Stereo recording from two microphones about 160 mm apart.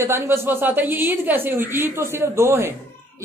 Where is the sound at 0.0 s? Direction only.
15° right (ahead or behind).